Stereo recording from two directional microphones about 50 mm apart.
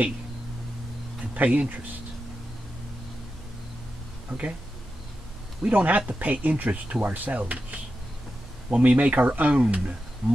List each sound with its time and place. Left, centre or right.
1.3 s speech: right
4.3 s speech: right
5.7 s speech: right